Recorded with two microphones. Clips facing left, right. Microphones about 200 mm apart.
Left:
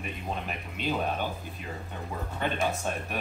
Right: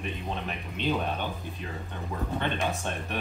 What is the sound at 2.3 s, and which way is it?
Speech, 5° left (ahead or behind).